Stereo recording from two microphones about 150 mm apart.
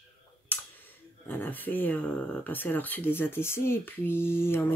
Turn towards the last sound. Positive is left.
turn(degrees=15)  # may be behind; listen again after turning